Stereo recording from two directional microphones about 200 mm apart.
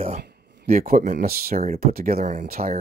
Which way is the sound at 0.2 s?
55° right (ahead or behind).